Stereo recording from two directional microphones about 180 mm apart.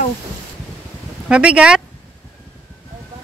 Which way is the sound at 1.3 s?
5° right (ahead or behind).